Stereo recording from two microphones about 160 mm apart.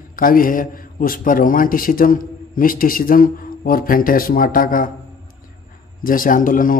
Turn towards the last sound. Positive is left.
turn(degrees=60)  # may be behind; listen again after turning